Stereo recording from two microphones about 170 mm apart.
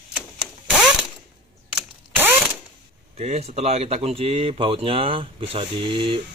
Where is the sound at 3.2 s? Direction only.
40° right (ahead or behind).